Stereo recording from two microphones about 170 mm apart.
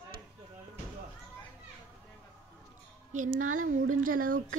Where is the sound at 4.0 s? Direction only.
55° right (ahead or behind).